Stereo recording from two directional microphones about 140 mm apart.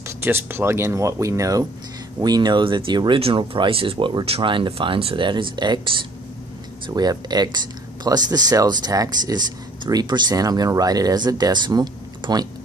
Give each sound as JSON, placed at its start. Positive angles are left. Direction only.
{"t": 0.2, "sound": "speech", "side_deg": -15}